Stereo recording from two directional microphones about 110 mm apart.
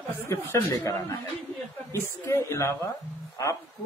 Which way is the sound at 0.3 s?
25° left (ahead or behind).